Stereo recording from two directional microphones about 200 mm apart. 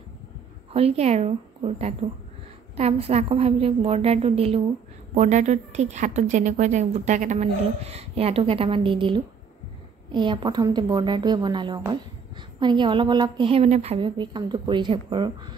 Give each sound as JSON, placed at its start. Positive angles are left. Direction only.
{"t": 0.7, "sound": "a woman's voice", "side_deg": -30}